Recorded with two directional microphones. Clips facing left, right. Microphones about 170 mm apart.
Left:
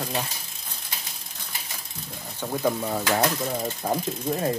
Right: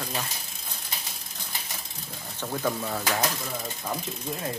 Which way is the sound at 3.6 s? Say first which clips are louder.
Left 6 dB; 40° left (ahead or behind).